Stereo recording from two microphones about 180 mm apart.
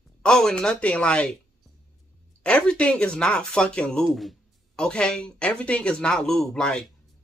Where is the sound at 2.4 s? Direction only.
5° left (ahead or behind).